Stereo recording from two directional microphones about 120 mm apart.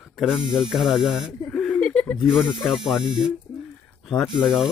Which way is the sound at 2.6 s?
5° right (ahead or behind).